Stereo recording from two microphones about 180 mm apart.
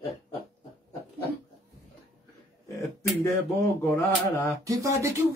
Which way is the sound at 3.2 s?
15° left (ahead or behind).